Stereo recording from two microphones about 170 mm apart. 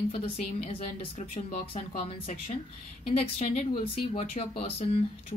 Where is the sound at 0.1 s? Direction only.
35° left (ahead or behind).